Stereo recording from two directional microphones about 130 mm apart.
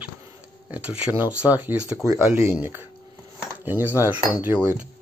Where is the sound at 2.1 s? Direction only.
20° right (ahead or behind).